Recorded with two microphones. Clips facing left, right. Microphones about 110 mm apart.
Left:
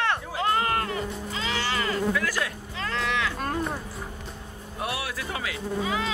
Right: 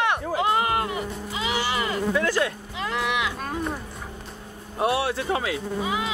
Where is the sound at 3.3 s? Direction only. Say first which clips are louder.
Left 1 dB; 5° right (ahead or behind).